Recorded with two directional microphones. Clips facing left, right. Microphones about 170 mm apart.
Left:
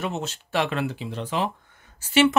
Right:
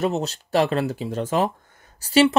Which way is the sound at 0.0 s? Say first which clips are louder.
Right 6 dB; 40° right (ahead or behind).